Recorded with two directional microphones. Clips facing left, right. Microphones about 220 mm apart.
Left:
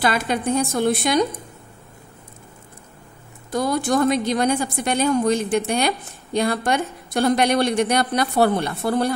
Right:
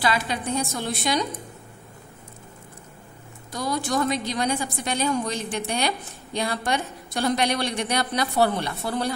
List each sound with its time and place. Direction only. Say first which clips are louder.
0.0 s a woman's voice: left 4 dB; 50° left (ahead or behind)
3.5 s a woman's voice: left 6 dB; 55° left (ahead or behind)